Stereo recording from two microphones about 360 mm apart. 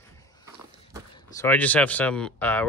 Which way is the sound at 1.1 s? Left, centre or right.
Centre.